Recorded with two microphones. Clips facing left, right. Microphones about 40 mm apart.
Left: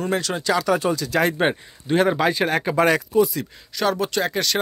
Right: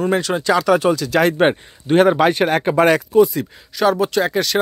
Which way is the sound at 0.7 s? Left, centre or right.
Right.